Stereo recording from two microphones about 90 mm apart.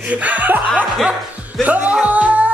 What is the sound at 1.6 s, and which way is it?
Music, 15° right (ahead or behind).